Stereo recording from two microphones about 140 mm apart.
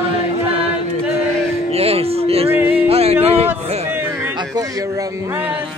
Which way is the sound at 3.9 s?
15° right (ahead or behind).